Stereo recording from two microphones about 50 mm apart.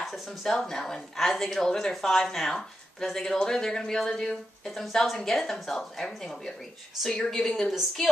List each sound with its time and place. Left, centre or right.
0.0 s a woman's voice: centre